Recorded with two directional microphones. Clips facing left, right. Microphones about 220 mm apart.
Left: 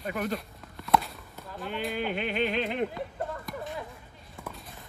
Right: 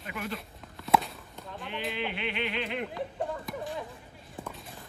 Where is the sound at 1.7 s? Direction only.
45° left (ahead or behind).